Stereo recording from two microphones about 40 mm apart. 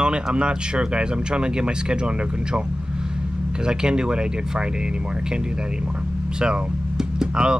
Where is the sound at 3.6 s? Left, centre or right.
Right.